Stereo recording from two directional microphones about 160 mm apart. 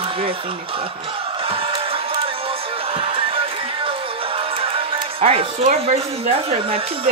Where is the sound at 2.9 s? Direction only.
35° right (ahead or behind).